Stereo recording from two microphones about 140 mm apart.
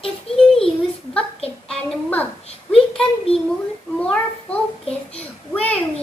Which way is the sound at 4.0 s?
10° left (ahead or behind).